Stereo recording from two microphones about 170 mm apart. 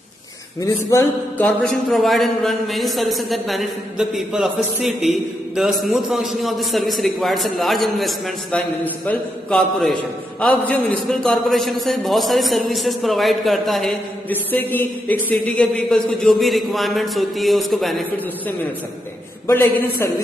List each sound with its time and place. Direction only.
0.8 s speech: 10° left (ahead or behind)
19.4 s a man's voice: 15° left (ahead or behind)